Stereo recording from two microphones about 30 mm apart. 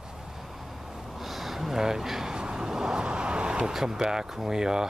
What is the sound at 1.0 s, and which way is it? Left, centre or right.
Gasp, centre.